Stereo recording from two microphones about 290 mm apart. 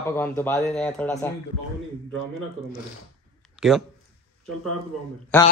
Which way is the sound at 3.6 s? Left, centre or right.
Centre.